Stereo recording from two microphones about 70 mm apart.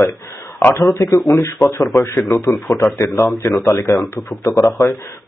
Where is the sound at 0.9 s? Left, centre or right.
Left.